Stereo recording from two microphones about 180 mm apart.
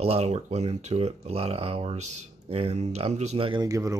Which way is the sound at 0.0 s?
35° right (ahead or behind).